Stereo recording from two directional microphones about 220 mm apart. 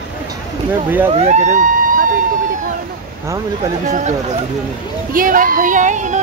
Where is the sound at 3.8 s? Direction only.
35° right (ahead or behind).